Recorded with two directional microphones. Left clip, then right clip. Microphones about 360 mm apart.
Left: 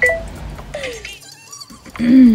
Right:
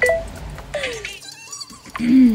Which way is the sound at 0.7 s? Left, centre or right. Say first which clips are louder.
Right 1 dB; right.